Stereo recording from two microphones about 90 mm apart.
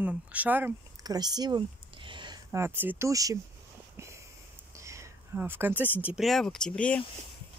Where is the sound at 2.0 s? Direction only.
65° right (ahead or behind).